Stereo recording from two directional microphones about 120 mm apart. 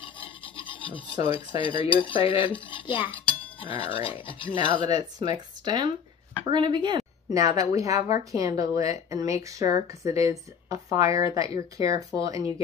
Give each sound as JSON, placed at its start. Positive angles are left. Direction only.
{"t": 0.6, "sound": "filing", "side_deg": 45}
{"t": 1.3, "sound": "cutlery", "side_deg": 45}
{"t": 3.3, "sound": "chink", "side_deg": 50}
{"t": 3.9, "sound": "cutlery", "side_deg": 45}
{"t": 4.8, "sound": "speech", "side_deg": -35}
{"t": 7.3, "sound": "a woman's voice", "side_deg": -30}